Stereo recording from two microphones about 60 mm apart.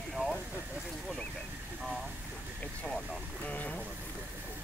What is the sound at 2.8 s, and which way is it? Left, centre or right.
Vehicle, centre.